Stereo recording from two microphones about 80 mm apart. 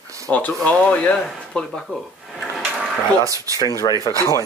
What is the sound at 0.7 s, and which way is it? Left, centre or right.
Speech, centre.